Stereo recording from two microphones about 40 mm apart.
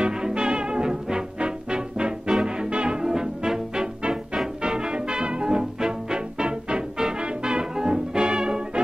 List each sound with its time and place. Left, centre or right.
0.0 s music: right